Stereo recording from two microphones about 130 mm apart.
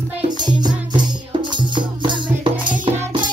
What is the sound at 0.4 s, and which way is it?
Music, 35° right (ahead or behind).